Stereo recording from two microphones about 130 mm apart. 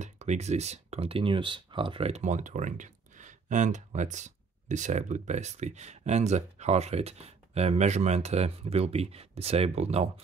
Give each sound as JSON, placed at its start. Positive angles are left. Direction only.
{"t": 0.0, "sound": "speech", "side_deg": -60}